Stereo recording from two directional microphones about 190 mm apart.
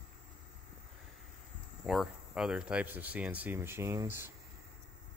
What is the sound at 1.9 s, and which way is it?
Speech, centre (ahead or behind).